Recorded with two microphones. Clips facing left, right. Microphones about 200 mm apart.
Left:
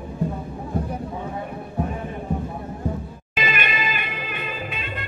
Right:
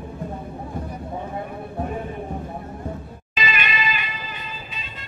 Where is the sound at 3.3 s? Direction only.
55° left (ahead or behind).